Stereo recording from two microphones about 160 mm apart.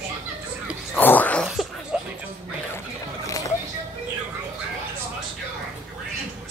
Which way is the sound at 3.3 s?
20° left (ahead or behind).